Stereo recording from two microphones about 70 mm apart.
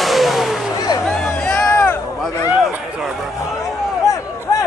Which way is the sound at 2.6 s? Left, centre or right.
Centre.